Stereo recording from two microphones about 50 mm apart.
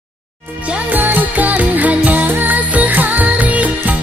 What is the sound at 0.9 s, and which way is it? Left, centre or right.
Music, right.